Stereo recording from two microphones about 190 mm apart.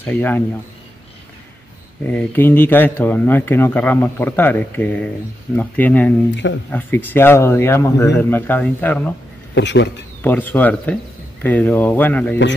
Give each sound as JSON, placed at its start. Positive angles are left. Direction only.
{"t": 0.0, "sound": "speech", "side_deg": 10}
{"t": 2.0, "sound": "speech", "side_deg": 10}
{"t": 9.5, "sound": "speech", "side_deg": 70}
{"t": 10.2, "sound": "speech", "side_deg": 10}